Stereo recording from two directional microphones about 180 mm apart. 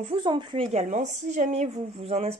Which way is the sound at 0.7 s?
45° right (ahead or behind).